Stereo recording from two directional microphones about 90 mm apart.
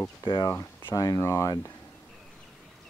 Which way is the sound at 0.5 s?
35° left (ahead or behind).